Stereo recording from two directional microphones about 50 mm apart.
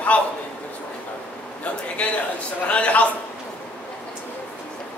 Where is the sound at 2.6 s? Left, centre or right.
Left.